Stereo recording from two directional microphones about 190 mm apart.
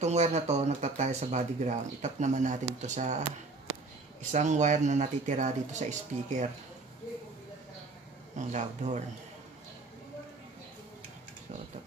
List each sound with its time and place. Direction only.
0.0 s speech: 35° right (ahead or behind)
4.3 s speech: 40° right (ahead or behind)
8.4 s speech: 40° right (ahead or behind)